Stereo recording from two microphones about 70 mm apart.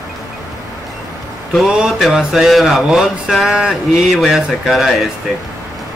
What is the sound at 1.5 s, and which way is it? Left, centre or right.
Speech, centre.